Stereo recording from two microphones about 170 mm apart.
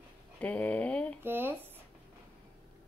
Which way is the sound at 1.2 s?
10° right (ahead or behind).